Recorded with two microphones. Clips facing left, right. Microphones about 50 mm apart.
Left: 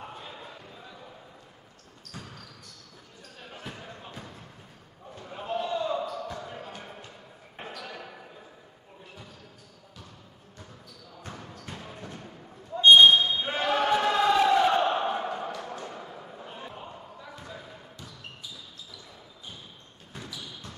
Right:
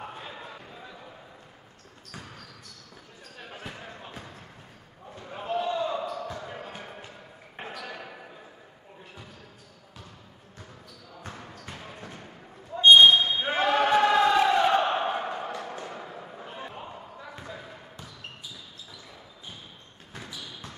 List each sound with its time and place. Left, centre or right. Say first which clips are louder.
0.0 s a sound: right 2 dB; centre
2.1 s basketball bounce: even; centre
3.4 s basketball bounce: right 1 dB; centre
5.1 s a sound: right 1 dB; centre
5.7 s basketball bounce: right 1 dB; centre
11.2 s basketball bounce: even; centre
13.7 s choir: right 3 dB; centre
14.8 s a sound: even; right
16.7 s basketball bounce: right 2 dB; centre
20.2 s basketball bounce: right 1 dB; right